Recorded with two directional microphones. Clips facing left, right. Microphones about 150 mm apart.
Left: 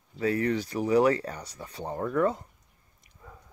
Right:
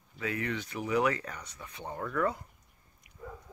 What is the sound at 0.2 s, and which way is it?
Speech, 35° left (ahead or behind).